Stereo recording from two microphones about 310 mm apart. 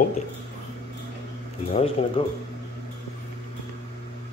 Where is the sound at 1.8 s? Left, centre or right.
Centre.